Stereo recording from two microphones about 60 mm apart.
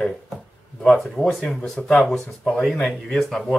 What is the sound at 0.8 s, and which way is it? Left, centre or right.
Speech, centre.